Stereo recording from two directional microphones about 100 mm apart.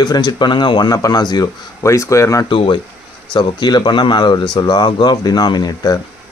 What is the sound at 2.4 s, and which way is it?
Speech, 55° left (ahead or behind).